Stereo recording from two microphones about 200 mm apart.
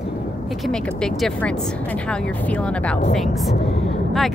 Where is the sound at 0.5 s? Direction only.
Centre (ahead or behind).